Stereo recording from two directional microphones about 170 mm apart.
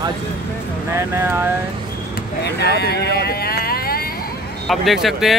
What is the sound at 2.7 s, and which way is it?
Speech, 70° left (ahead or behind).